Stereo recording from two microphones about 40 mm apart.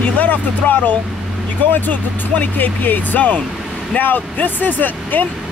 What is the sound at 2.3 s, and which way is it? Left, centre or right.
Speech, left.